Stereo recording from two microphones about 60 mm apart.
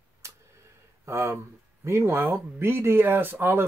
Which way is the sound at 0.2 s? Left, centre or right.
Right.